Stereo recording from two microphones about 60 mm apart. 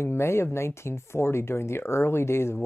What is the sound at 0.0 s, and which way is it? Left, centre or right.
Speech, left.